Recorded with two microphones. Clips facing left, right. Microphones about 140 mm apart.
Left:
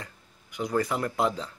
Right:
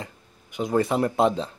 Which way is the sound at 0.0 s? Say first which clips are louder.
Right 6 dB; 20° right (ahead or behind).